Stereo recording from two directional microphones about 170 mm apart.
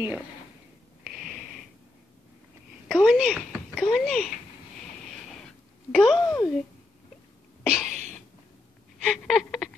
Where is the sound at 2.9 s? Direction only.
5° right (ahead or behind).